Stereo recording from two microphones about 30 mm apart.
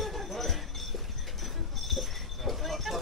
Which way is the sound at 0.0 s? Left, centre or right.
Centre.